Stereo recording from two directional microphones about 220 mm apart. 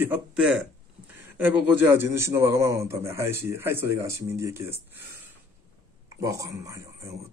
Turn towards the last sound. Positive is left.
turn(degrees=-15)  # may be behind; listen again after turning